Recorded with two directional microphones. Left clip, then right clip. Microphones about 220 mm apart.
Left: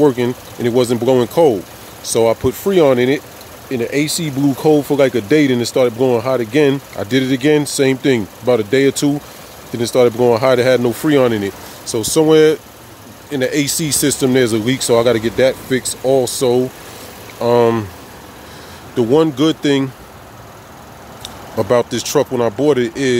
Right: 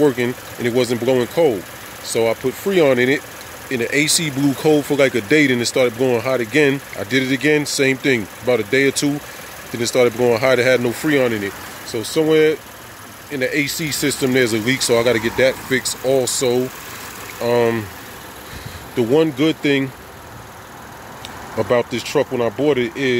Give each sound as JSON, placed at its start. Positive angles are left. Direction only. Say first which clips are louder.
{"t": 0.0, "sound": "speech", "louder": "left 3 dB", "side_deg": 10}
{"t": 18.9, "sound": "speech", "louder": "left 3 dB", "side_deg": 10}
{"t": 21.5, "sound": "speech", "louder": "left 3 dB", "side_deg": 15}